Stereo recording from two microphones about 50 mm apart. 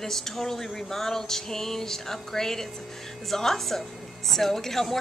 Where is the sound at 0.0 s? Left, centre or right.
Centre.